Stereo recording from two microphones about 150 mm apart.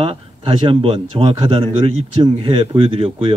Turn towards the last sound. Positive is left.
turn(degrees=-35)  # may be behind; listen again after turning